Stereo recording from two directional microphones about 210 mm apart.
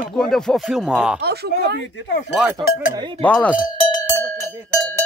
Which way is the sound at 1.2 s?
50° right (ahead or behind).